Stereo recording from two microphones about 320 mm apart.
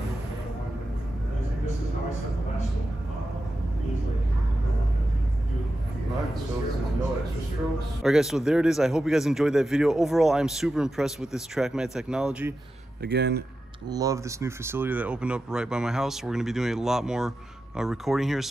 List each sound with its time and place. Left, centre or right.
8.0 s speech: centre
13.0 s speech: right
13.8 s speech: centre